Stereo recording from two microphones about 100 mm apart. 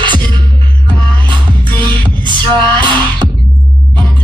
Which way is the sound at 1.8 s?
50° right (ahead or behind).